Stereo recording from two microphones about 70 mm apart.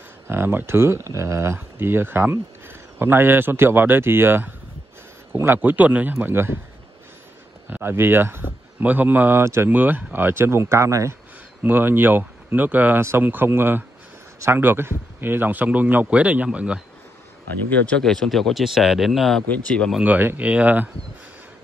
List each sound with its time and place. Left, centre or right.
0.3 s a man's voice: right
7.7 s speech: right
9.4 s speech: right
9.7 s speech: right
11.6 s a man's voice: right
17.6 s speech: centre
18.0 s speech: centre
19.4 s speech: left
20.0 s a man's voice: right